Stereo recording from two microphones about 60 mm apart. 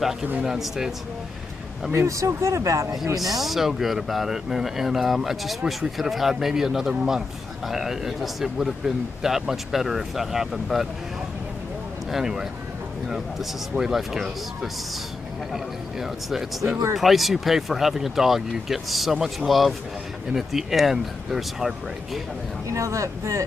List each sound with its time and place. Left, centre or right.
0.4 s a man's voice: centre
2.0 s speech: right
3.2 s a man's voice: centre
12.1 s a man's voice: centre
22.7 s speech: right